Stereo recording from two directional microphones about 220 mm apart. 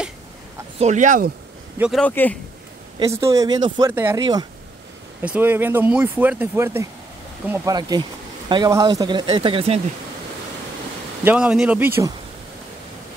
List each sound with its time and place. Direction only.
0.7 s speech: 35° right (ahead or behind)
1.8 s speech: centre (ahead or behind)
3.0 s speech: 15° right (ahead or behind)
5.2 s speech: 5° right (ahead or behind); by 9.8 s 25° right (ahead or behind)
11.2 s speech: 5° right (ahead or behind)